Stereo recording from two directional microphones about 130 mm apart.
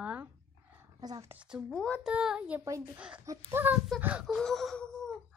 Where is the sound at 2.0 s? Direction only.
5° right (ahead or behind).